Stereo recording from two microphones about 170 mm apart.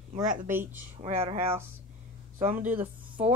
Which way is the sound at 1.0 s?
35° right (ahead or behind).